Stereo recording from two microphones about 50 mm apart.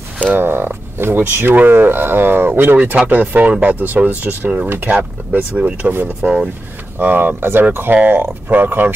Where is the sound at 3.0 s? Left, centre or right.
Right.